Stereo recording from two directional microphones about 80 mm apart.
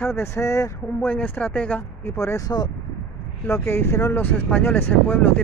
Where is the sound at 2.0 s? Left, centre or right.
Left.